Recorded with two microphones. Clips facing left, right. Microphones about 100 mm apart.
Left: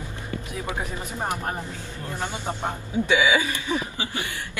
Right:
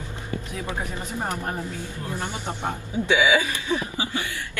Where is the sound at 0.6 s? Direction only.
15° left (ahead or behind).